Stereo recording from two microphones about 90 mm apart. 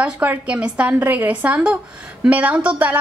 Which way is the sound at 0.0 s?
15° right (ahead or behind).